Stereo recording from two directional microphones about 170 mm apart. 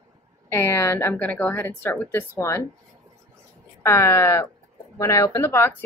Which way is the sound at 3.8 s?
15° left (ahead or behind).